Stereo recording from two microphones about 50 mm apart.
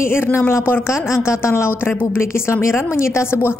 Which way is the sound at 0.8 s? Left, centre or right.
Left.